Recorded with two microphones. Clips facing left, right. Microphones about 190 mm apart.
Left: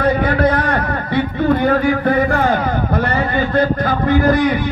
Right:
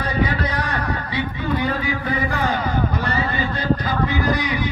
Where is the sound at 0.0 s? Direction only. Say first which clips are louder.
Left 8 dB; 55° left (ahead or behind).